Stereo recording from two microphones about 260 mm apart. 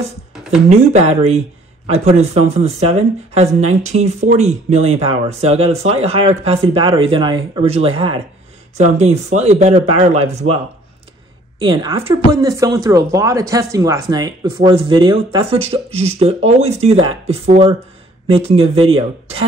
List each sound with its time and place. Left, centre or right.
0.3 s a sound: centre
0.7 s speech: right
11.6 s speech: centre